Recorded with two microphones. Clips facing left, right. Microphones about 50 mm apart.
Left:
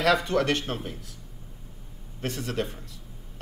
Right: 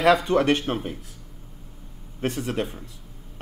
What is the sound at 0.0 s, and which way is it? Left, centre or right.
Speech, centre.